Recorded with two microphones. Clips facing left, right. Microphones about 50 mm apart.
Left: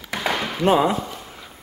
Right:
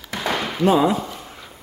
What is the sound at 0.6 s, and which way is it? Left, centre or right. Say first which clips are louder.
Speech: right 1 dB; left.